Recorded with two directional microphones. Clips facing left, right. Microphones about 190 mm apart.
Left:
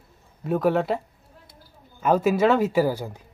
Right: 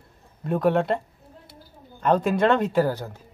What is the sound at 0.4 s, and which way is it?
Speech, centre (ahead or behind).